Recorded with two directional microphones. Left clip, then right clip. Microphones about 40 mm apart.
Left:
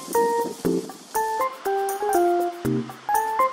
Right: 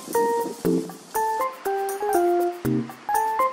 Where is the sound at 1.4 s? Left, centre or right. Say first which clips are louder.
Left 1 dB; centre.